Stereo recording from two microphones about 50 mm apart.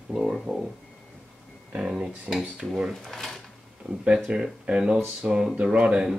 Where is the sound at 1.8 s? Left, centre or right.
Centre.